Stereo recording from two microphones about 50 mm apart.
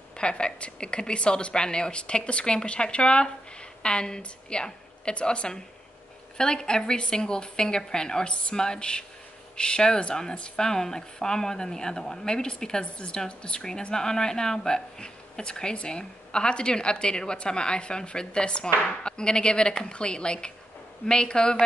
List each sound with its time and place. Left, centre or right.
0.2 s a woman's voice: centre